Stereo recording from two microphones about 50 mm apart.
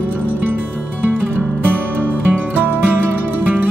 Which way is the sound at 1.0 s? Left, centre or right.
Right.